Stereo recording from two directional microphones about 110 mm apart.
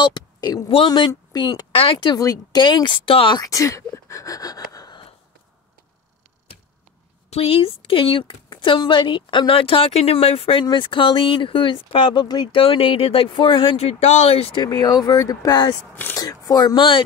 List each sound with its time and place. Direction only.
0.0 s speech: 40° left (ahead or behind)
1.7 s speech: 60° left (ahead or behind)
2.1 s speech: 35° left (ahead or behind); by 3.3 s 55° left (ahead or behind)
3.3 s speech: 30° left (ahead or behind)
7.2 s a woman's voice: 65° left (ahead or behind)
10.6 s speech: 45° left (ahead or behind)
12.5 s a woman's voice: 55° left (ahead or behind)
14.6 s speech: 40° left (ahead or behind)
15.9 s speech: 15° left (ahead or behind)
16.2 s speech: 35° left (ahead or behind)